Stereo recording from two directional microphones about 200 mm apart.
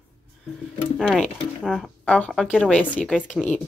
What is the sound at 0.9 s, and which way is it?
Speech, 5° left (ahead or behind).